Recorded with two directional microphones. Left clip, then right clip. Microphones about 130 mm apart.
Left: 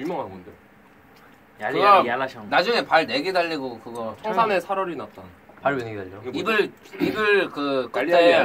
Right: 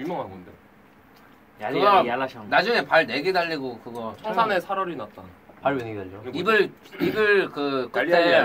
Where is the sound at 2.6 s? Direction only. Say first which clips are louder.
Left 1 dB; 20° right (ahead or behind).